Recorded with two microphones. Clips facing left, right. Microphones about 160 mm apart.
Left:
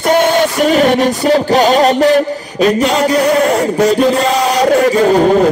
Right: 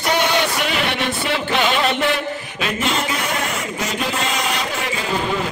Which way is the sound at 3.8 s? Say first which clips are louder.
Left 12 dB; 35° left (ahead or behind).